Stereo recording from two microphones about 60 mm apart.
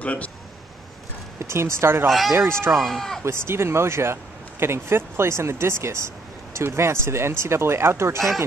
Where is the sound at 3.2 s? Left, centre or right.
Right.